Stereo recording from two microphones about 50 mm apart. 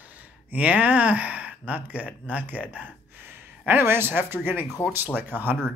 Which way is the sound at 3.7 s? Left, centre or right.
Right.